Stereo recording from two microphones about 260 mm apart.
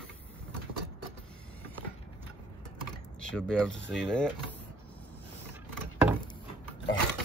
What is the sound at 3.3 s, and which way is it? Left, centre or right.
Speech, centre.